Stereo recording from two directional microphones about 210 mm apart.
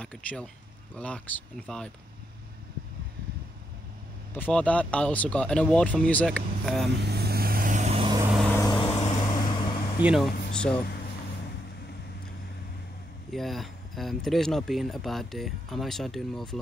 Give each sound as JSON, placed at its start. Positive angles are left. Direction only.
{"t": 0.0, "sound": "speech", "side_deg": 5}
{"t": 4.3, "sound": "speech", "side_deg": 5}
{"t": 7.0, "sound": "vehicle", "side_deg": -50}
{"t": 8.3, "sound": "vehicle", "side_deg": 0}
{"t": 8.5, "sound": "vehicle", "side_deg": 15}
{"t": 10.0, "sound": "speech", "side_deg": 0}
{"t": 13.3, "sound": "speech", "side_deg": 0}